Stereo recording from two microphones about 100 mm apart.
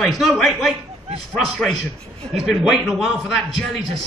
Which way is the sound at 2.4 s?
Centre (ahead or behind).